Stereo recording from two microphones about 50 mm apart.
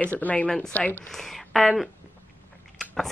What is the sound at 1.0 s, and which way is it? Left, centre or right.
Speech, centre.